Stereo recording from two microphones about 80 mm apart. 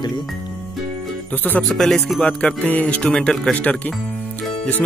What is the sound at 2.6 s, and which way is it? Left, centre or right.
Speech, left.